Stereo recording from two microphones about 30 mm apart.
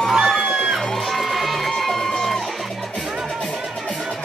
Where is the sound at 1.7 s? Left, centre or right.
Centre.